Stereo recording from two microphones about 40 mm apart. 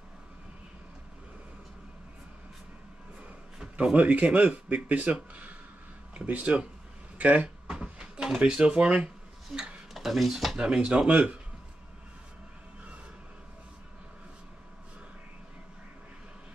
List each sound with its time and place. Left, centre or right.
3.9 s speech: right
7.4 s cupboard open or close: right
8.4 s speech: right
9.5 s speech: centre
10.6 s speech: right